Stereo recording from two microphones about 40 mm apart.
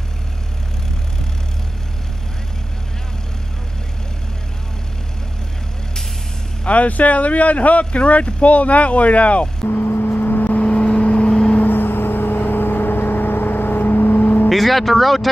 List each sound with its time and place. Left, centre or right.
6.6 s speech: left
9.7 s vehicle: left
11.6 s vehicle: left
14.5 s speech: centre